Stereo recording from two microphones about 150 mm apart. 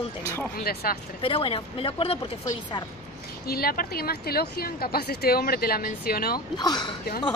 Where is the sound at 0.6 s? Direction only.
90° left.